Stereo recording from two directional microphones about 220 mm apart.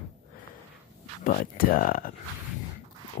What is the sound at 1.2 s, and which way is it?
Speech, 40° left (ahead or behind).